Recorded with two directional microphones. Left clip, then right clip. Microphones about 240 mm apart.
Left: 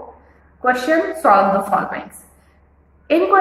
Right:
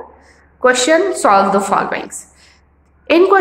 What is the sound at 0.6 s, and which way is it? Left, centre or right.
A woman's voice, right.